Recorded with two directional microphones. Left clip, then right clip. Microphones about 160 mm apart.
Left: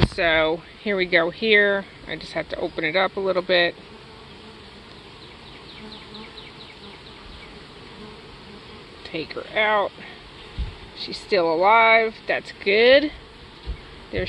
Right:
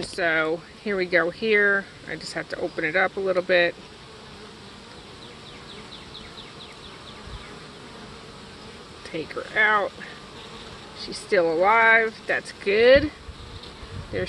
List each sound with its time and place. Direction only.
0.1 s speech: 15° left (ahead or behind)
9.1 s speech: 5° left (ahead or behind)
11.2 s speech: centre (ahead or behind)